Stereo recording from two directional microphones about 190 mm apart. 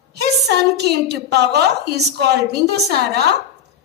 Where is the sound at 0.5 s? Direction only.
60° right (ahead or behind).